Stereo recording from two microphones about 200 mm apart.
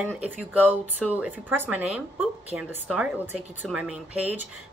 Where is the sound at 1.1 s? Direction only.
10° right (ahead or behind).